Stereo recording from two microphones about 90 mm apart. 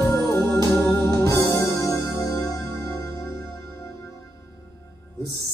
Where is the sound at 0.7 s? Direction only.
30° left (ahead or behind).